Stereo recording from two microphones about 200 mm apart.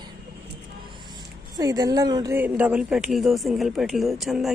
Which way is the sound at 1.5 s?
20° right (ahead or behind).